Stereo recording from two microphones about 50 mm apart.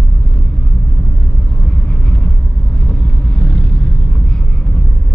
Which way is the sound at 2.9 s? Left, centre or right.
Centre.